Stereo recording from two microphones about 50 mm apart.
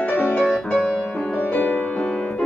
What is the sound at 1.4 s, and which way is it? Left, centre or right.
Music, left.